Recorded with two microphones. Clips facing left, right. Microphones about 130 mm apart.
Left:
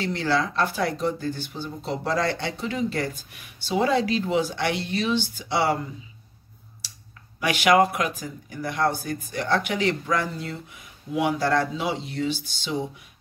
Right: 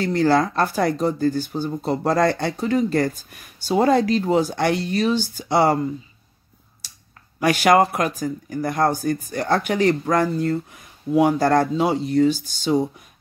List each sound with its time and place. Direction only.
0.0 s speech: 45° right (ahead or behind)
7.3 s speech: 45° right (ahead or behind)